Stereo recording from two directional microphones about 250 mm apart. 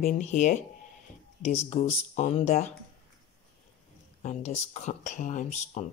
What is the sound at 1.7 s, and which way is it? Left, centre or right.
Speech, left.